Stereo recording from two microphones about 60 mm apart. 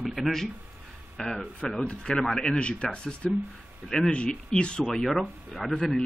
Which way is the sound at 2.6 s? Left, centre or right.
Centre.